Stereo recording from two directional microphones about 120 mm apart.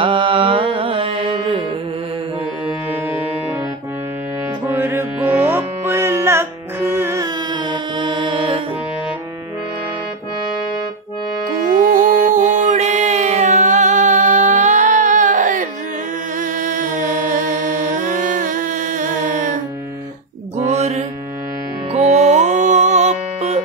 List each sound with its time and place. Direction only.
0.0 s music: 45° right (ahead or behind)
4.6 s carnatic music: 15° right (ahead or behind)
7.5 s mantra: 40° right (ahead or behind)
12.2 s music: 90° right
20.6 s mantra: 70° right (ahead or behind)
21.9 s music: 70° right (ahead or behind)